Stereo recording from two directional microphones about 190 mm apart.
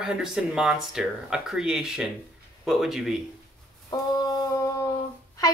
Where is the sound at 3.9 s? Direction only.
20° left (ahead or behind).